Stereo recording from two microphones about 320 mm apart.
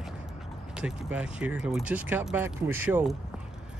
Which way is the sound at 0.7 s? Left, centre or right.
Centre.